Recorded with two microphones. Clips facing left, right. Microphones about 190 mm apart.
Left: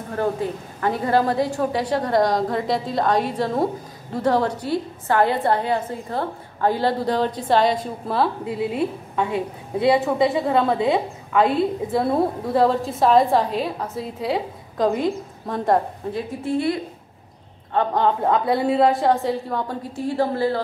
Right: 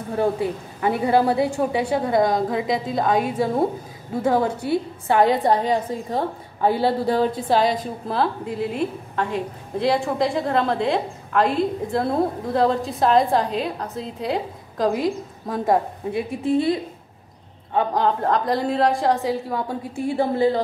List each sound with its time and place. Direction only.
0.7 s a woman's voice: 10° right (ahead or behind)
16.4 s a woman's voice: 20° right (ahead or behind)
17.7 s a woman's voice: centre (ahead or behind)
20.2 s a woman's voice: 15° right (ahead or behind)